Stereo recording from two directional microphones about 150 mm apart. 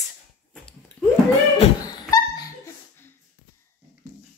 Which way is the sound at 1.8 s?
25° left (ahead or behind).